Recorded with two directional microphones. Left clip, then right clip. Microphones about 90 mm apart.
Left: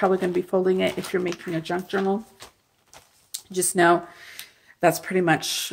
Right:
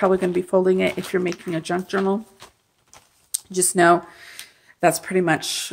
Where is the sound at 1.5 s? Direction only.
60° right (ahead or behind).